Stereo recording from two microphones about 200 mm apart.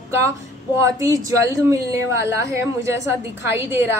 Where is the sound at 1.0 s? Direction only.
15° right (ahead or behind).